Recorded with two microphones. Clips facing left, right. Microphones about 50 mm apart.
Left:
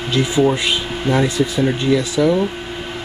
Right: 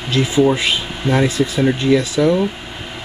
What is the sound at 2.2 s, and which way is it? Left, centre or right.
Speech, centre.